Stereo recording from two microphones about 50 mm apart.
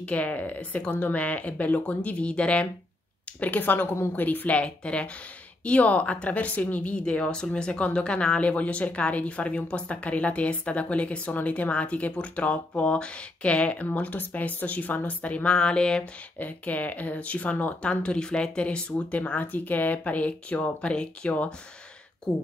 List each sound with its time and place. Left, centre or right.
0.0 s speech: left
3.3 s a woman's voice: left
15.5 s a sound: centre
16.3 s speech: left